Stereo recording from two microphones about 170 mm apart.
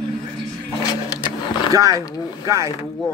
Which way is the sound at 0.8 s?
25° left (ahead or behind).